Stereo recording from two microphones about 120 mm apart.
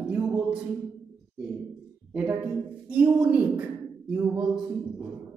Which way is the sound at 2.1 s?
10° right (ahead or behind).